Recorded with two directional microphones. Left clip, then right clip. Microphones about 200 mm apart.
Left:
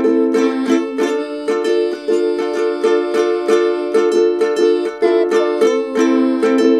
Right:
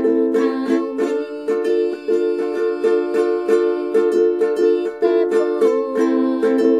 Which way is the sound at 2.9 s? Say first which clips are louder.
Left 2 dB; 25° left (ahead or behind).